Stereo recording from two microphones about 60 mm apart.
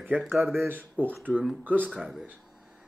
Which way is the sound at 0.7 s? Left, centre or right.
Right.